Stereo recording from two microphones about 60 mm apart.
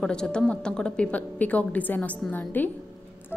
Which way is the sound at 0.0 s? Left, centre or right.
Centre.